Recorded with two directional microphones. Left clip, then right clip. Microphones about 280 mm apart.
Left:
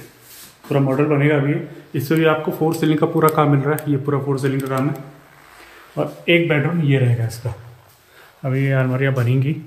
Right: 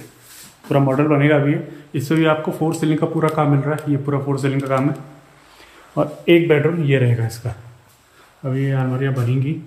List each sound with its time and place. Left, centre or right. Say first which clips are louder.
0.7 s speech: right 1 dB; centre
5.9 s speech: right 2 dB; right
8.5 s speech: left 3 dB; centre